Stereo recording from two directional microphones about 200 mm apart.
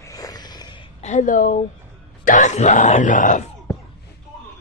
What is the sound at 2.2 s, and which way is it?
Speech, 40° left (ahead or behind).